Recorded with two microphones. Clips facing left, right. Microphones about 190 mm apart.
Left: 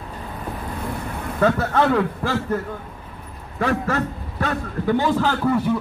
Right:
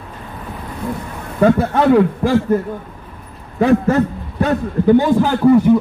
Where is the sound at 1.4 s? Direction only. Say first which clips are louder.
Right 6 dB; 15° right (ahead or behind).